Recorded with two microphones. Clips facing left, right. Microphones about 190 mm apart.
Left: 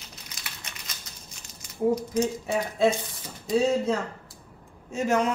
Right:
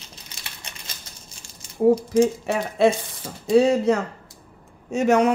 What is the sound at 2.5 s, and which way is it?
A man's voice, 75° right (ahead or behind).